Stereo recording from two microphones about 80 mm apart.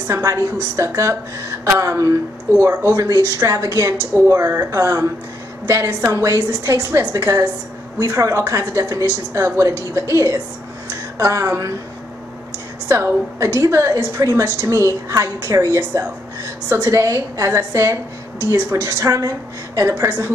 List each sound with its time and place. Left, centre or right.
0.1 s a woman's voice: right
2.5 s a woman's voice: right
3.1 s a woman's voice: right
4.1 s a woman's voice: right
4.6 s a woman's voice: right
12.8 s a woman's voice: right